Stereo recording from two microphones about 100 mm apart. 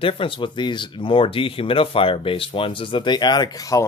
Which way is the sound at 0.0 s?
60° left (ahead or behind).